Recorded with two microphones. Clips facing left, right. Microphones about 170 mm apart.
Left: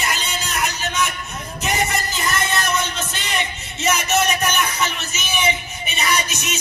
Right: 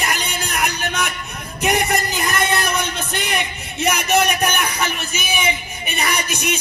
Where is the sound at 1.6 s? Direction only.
60° right (ahead or behind).